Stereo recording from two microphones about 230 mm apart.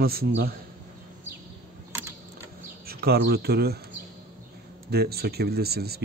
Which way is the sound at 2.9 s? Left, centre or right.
Right.